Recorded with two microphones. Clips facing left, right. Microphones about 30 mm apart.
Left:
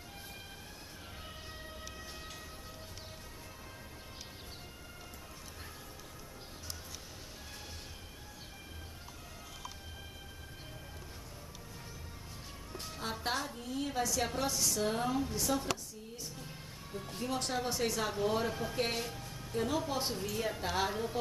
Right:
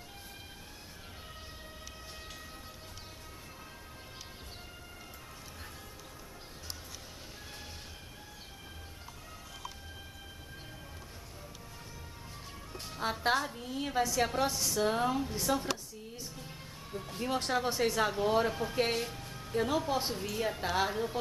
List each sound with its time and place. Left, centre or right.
12.8 s a woman's voice: centre
16.3 s music: centre
17.2 s a woman's voice: right